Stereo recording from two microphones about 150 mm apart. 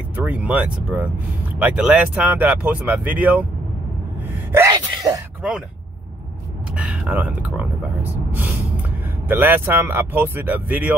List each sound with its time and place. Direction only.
0.1 s speech: 10° right (ahead or behind)
4.5 s gasp: 15° right (ahead or behind)
4.7 s speech: 25° right (ahead or behind)
6.7 s speech: 10° right (ahead or behind)